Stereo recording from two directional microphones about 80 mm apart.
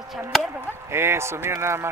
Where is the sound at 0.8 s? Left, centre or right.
Right.